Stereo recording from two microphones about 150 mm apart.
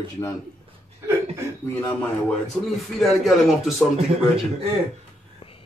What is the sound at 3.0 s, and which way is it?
Speech, centre (ahead or behind).